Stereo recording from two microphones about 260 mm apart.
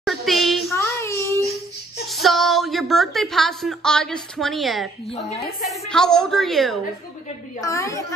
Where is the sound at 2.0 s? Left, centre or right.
Centre.